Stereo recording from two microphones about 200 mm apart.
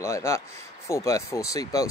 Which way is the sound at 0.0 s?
15° left (ahead or behind).